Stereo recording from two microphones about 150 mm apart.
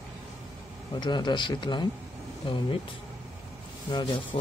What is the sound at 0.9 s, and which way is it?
Speech, 30° left (ahead or behind).